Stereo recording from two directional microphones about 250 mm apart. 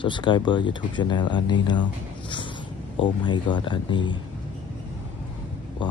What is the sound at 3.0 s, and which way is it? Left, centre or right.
A man's voice, centre.